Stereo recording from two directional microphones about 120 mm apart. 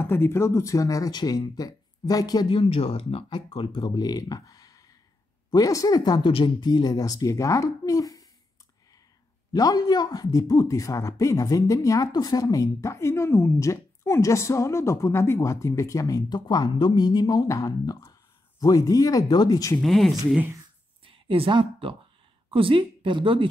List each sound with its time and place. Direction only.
0.0 s speech: 20° left (ahead or behind)
2.6 s speech: 55° left (ahead or behind); by 8.3 s 30° left (ahead or behind)
9.5 s speech: 30° left (ahead or behind)
19.8 s speech: centre (ahead or behind)
21.0 s a sound: 50° right (ahead or behind)
22.5 s speech: 45° right (ahead or behind)